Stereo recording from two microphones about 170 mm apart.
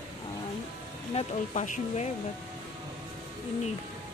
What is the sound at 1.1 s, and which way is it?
Speech, 40° left (ahead or behind).